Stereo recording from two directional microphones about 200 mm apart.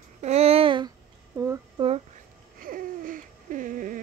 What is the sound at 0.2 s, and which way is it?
Babbling, 30° right (ahead or behind).